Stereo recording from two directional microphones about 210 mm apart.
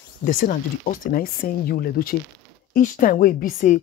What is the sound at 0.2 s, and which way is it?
A woman's voice, 40° left (ahead or behind).